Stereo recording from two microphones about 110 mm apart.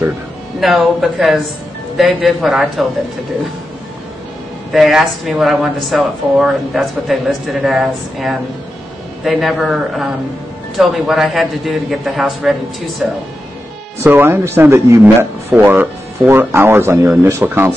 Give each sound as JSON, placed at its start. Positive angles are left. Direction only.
{"t": 0.6, "sound": "speech", "side_deg": 0}
{"t": 4.7, "sound": "speech", "side_deg": 0}
{"t": 14.0, "sound": "speech", "side_deg": -20}